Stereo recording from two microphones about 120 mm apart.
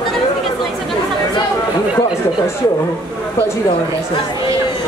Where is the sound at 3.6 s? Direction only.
45° left (ahead or behind).